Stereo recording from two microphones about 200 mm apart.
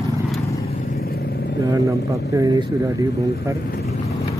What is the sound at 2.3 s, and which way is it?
Speech, 15° right (ahead or behind).